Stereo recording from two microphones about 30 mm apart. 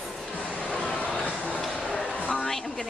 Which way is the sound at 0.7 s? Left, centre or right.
Left.